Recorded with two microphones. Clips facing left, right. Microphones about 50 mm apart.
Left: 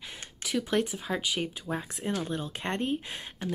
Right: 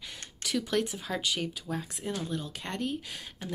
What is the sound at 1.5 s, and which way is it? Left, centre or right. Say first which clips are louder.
Speech: left 2 dB; left.